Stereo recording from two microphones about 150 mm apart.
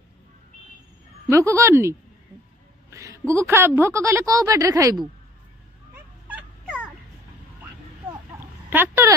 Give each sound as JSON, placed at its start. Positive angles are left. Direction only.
{"t": 1.3, "sound": "a woman's voice", "side_deg": -20}
{"t": 6.2, "sound": "fowl", "side_deg": -10}
{"t": 8.1, "sound": "a sound", "side_deg": -15}